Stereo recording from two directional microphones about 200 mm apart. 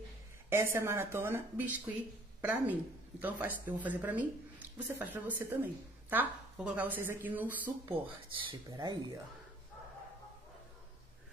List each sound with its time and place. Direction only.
0.5 s speech: 10° right (ahead or behind)
8.5 s speech: 20° right (ahead or behind)